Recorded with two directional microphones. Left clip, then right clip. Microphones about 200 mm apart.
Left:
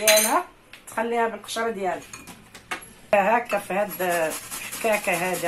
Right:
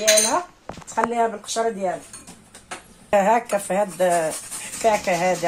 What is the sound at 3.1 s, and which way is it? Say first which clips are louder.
Speech: right 2 dB; 60° right (ahead or behind).